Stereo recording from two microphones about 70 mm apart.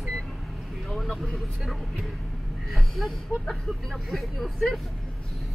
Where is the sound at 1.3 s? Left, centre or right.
Centre.